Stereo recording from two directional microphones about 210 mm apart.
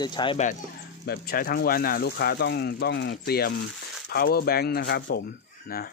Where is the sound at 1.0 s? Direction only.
45° left (ahead or behind).